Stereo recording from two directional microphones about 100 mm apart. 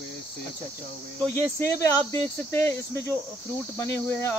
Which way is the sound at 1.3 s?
30° left (ahead or behind).